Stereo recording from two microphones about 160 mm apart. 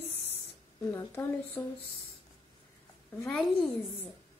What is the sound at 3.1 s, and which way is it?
Speech, 10° left (ahead or behind).